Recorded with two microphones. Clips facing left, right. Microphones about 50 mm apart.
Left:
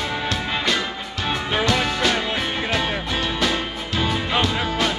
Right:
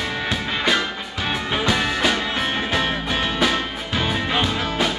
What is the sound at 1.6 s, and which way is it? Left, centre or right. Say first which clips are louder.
Music: right 1 dB; centre.